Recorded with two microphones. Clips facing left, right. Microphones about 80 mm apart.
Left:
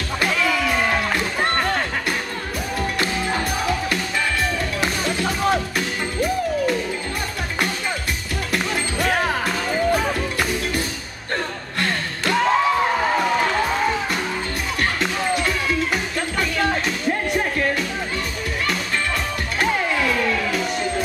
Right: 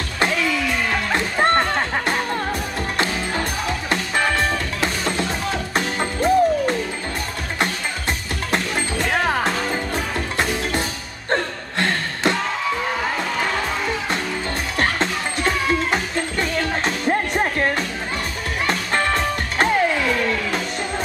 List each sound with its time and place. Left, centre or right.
5.8 s music: right
11.8 s a sound: right
14.8 s music: right